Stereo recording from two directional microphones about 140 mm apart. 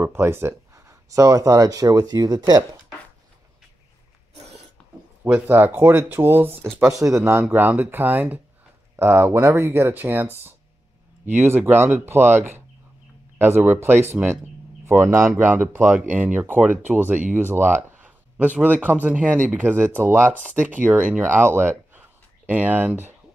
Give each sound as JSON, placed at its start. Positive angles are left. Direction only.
{"t": 0.0, "sound": "speech", "side_deg": -15}
{"t": 5.2, "sound": "speech", "side_deg": -15}